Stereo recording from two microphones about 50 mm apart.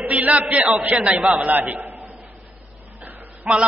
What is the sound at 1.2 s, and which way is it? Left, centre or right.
Speech, centre.